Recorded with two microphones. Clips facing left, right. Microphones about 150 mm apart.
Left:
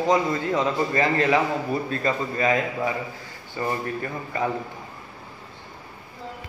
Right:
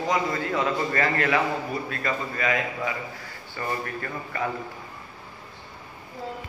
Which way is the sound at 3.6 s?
20° left (ahead or behind).